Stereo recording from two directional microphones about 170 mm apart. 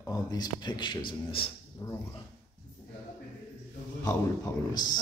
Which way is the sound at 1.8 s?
20° left (ahead or behind).